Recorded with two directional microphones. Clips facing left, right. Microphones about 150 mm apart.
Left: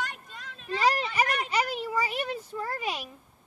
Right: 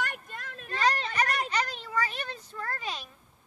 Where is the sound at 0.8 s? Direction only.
10° left (ahead or behind).